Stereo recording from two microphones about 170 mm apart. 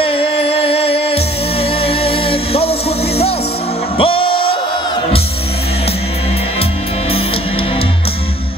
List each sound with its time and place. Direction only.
0.0 s music: 35° left (ahead or behind)
4.0 s music: 35° left (ahead or behind)